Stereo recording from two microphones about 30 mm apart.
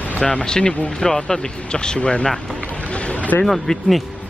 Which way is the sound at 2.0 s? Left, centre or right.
Left.